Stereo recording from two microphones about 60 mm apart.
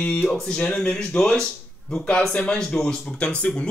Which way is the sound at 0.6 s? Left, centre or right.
Centre.